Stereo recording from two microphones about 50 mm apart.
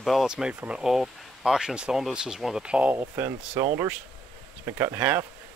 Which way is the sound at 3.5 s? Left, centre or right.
Right.